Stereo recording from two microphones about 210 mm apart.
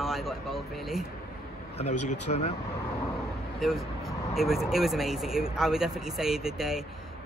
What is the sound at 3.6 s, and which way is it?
Speech, centre (ahead or behind).